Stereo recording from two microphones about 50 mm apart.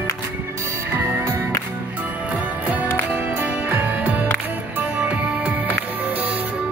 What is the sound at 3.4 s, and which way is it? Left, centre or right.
Music, right.